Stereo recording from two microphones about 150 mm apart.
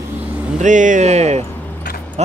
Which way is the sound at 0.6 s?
55° right (ahead or behind).